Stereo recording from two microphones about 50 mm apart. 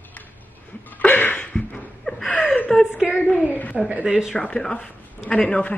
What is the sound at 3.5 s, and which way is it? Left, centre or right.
Speech, left.